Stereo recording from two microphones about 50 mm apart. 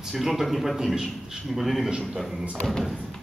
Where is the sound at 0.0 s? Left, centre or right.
Centre.